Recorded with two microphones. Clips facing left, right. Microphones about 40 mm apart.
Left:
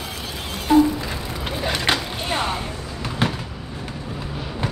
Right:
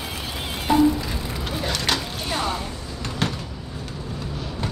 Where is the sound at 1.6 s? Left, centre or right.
Left.